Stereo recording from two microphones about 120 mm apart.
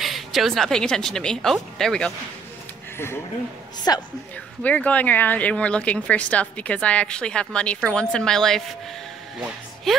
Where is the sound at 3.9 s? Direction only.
30° left (ahead or behind).